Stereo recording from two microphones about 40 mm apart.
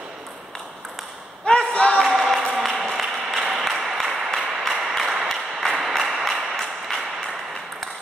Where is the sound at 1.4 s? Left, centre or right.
Left.